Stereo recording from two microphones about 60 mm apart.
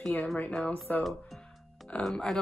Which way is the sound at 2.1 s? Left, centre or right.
Centre.